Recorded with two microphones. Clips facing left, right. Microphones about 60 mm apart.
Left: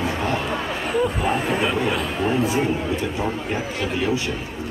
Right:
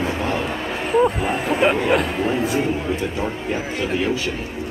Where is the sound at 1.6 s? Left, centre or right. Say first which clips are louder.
Right 5 dB; right.